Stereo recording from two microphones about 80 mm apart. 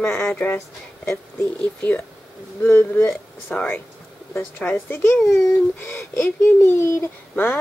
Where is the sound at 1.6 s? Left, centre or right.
Left.